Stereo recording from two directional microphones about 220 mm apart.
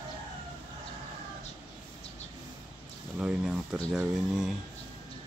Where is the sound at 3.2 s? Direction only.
5° right (ahead or behind).